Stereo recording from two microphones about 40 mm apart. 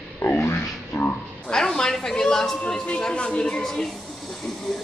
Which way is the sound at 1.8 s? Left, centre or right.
Centre.